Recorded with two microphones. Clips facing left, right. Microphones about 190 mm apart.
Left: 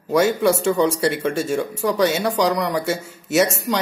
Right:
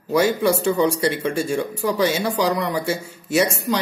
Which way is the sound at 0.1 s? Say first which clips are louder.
Left 1 dB; centre (ahead or behind).